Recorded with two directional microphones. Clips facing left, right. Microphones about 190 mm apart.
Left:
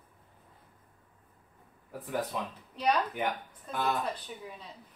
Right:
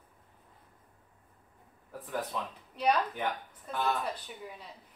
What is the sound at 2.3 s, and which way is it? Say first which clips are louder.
Speech: left 1 dB; 10° left (ahead or behind).